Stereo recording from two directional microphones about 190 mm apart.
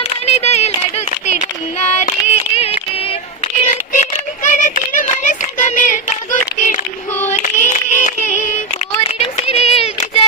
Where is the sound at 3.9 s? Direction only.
40° left (ahead or behind).